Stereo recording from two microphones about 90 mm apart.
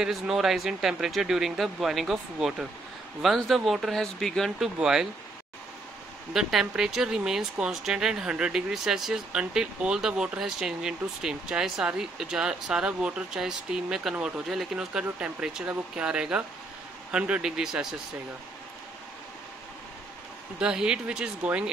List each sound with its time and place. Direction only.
0.0 s speech: 5° right (ahead or behind)
4.7 s speech: 5° right (ahead or behind)
6.3 s speech: 5° right (ahead or behind)
20.5 s speech: 10° right (ahead or behind)